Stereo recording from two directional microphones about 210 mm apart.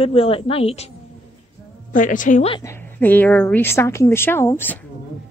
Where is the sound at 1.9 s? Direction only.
40° left (ahead or behind).